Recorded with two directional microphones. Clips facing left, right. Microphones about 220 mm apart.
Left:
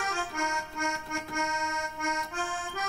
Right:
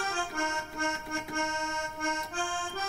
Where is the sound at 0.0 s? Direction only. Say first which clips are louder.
Even; 30° right (ahead or behind).